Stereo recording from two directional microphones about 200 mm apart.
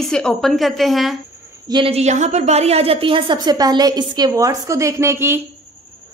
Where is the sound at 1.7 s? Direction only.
30° right (ahead or behind); by 5.4 s 10° right (ahead or behind).